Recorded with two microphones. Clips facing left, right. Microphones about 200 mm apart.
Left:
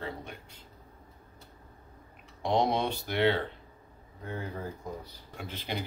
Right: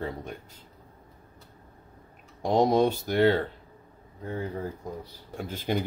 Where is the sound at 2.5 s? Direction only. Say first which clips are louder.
Right 6 dB; 40° right (ahead or behind).